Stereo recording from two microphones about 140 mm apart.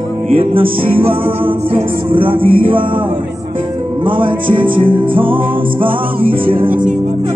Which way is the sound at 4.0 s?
35° right (ahead or behind).